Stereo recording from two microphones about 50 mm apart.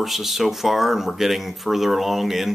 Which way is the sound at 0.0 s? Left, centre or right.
Centre.